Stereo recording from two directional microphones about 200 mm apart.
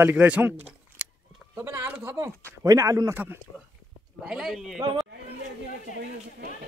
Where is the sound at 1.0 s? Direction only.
5° right (ahead or behind).